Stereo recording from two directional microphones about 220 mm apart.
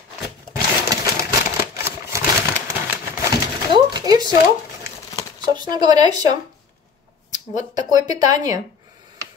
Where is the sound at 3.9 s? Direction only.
20° right (ahead or behind).